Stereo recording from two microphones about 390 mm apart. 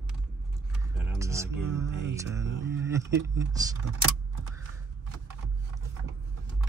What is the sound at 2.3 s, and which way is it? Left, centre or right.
Mantra, centre.